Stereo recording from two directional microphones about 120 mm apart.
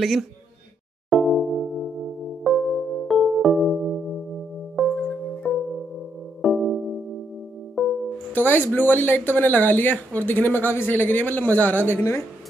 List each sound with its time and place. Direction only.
0.0 s speech: centre (ahead or behind)
1.1 s music: centre (ahead or behind)
4.8 s singing bowl: centre (ahead or behind)
5.4 s music: centre (ahead or behind)
8.4 s speech: 15° left (ahead or behind)